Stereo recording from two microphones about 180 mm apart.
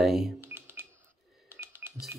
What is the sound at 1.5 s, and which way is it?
Music, 10° right (ahead or behind).